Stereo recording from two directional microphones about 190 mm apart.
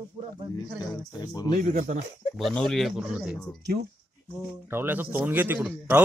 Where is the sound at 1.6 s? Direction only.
40° right (ahead or behind).